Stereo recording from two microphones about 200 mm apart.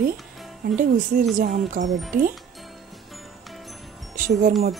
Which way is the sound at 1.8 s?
50° right (ahead or behind).